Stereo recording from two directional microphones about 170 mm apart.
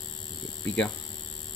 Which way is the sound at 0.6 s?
10° left (ahead or behind).